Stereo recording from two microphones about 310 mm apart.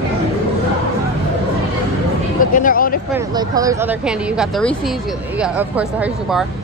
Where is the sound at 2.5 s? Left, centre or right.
Left.